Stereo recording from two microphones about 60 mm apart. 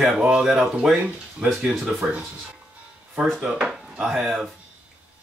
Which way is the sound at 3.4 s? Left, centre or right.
Centre.